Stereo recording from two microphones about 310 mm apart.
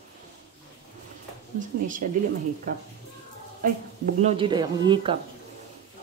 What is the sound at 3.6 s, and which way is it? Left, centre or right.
Speech, right.